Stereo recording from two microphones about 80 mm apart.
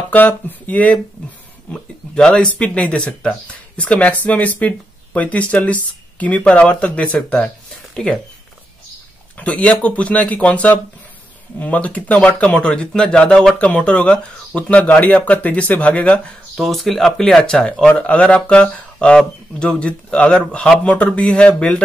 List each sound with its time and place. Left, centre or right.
0.1 s speech: left
9.4 s speech: centre
16.5 s speech: centre